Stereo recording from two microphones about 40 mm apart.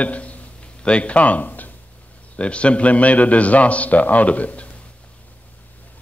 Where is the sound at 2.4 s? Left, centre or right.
Left.